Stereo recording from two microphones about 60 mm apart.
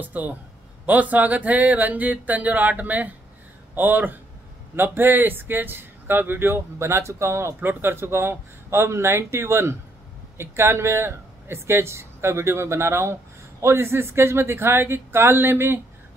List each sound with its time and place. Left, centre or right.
0.0 s speech: right